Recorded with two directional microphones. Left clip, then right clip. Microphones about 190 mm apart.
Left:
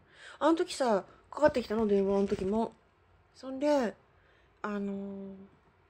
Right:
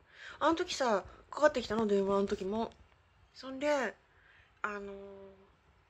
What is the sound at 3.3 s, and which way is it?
Speech, 20° left (ahead or behind).